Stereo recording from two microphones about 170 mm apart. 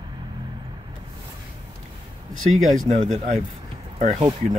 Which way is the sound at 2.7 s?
45° right (ahead or behind).